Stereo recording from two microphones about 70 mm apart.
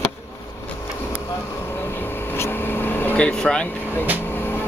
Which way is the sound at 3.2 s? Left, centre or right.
Centre.